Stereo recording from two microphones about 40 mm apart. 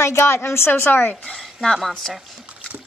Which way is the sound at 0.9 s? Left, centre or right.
Left.